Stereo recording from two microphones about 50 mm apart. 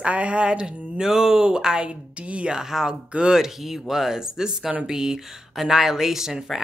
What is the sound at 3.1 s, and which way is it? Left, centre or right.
Speech, right.